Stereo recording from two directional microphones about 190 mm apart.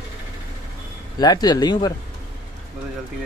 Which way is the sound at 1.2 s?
20° left (ahead or behind).